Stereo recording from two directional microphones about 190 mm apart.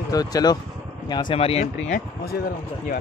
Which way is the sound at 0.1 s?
20° left (ahead or behind).